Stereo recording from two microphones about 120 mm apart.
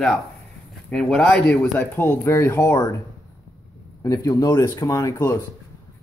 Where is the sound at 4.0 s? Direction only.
25° left (ahead or behind).